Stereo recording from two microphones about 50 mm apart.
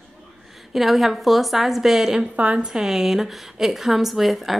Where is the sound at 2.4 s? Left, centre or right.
Right.